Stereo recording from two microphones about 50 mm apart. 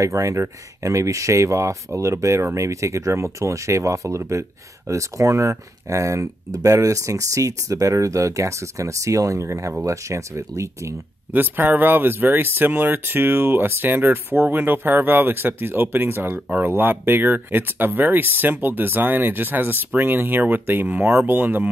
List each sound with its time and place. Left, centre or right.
0.0 s speech: right
11.3 s speech: right
21.2 s speech: right